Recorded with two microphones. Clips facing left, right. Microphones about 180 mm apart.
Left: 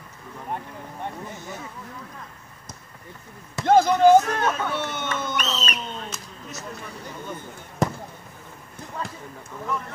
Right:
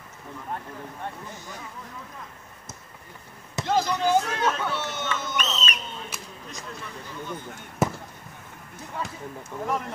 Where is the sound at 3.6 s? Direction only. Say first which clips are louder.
Left 8 dB; 50° left (ahead or behind).